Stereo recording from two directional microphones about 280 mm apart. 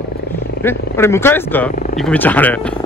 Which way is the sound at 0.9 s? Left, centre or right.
Centre.